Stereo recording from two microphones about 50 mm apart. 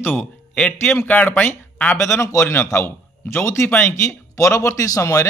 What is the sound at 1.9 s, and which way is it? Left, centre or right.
Speech, left.